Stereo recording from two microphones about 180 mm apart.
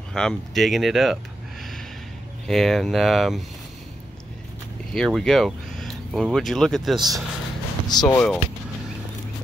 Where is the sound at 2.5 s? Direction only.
Centre (ahead or behind).